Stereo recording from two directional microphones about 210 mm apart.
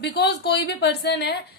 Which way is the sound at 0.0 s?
50° left (ahead or behind).